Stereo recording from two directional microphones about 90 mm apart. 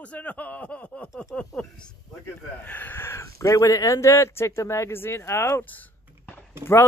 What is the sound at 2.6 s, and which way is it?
Speech, 20° left (ahead or behind).